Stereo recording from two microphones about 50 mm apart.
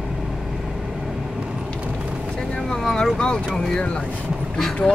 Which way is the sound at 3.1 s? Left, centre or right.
Centre.